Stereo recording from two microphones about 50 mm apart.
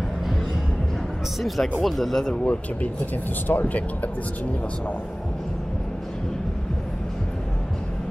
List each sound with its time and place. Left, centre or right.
1.4 s speech: centre
2.4 s speech: left